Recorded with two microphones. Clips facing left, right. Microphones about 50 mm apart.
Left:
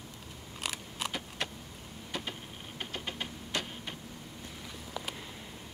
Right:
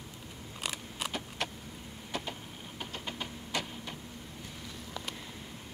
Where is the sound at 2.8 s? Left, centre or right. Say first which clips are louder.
Left 1 dB; left.